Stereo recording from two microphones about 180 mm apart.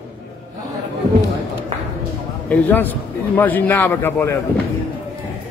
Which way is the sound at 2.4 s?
10° left (ahead or behind).